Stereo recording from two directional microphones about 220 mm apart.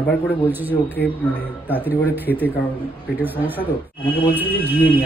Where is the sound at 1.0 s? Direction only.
50° left (ahead or behind).